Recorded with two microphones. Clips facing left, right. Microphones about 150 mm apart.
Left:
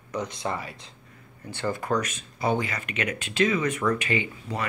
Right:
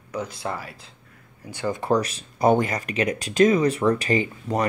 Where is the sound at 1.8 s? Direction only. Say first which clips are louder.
Right 5 dB; 35° right (ahead or behind).